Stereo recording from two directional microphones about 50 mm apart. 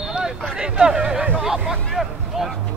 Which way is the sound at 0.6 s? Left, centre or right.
Centre.